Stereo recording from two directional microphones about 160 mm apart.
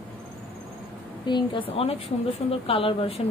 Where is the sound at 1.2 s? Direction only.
30° left (ahead or behind).